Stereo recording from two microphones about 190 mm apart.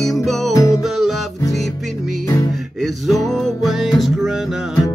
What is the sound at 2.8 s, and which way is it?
Music, centre (ahead or behind).